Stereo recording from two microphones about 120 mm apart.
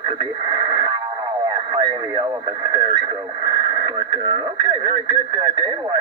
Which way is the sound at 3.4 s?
25° right (ahead or behind).